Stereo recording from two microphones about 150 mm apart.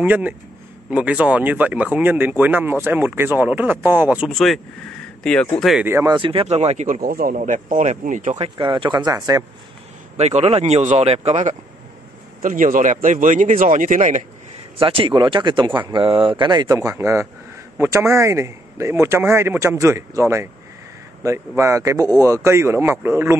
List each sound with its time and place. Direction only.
0.0 s speech: 10° right (ahead or behind)
4.3 s speech: centre (ahead or behind)
5.9 s speech: 20° right (ahead or behind)
6.1 s speech: 35° right (ahead or behind)
7.0 s a man's voice: 75° right (ahead or behind)
8.4 s speech: 35° right (ahead or behind)
10.1 s speech: 45° right (ahead or behind)
12.4 s a man's voice: 65° right (ahead or behind)
14.8 s speech: 35° right (ahead or behind)
16.6 s speech: 20° right (ahead or behind)